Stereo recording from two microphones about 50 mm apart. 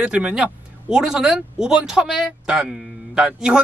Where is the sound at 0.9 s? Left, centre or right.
Centre.